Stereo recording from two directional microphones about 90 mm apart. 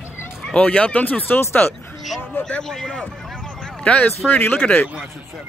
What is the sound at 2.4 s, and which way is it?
Speech, 5° left (ahead or behind).